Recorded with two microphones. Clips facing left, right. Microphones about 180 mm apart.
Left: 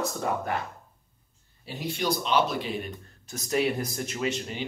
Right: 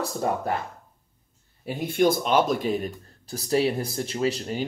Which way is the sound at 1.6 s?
50° right (ahead or behind).